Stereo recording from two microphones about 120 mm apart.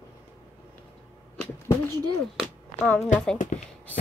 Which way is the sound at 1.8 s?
35° right (ahead or behind).